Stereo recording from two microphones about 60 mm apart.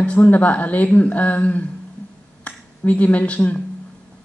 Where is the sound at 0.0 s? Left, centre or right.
Left.